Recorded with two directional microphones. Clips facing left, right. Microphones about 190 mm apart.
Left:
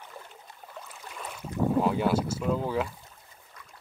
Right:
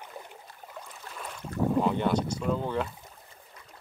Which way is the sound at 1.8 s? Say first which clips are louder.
Left 1 dB; 5° left (ahead or behind).